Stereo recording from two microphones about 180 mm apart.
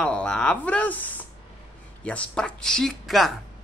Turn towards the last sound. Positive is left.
turn(degrees=0)  # may be behind; listen again after turning